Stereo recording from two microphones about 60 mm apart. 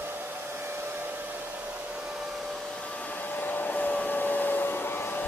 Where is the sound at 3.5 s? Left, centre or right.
Left.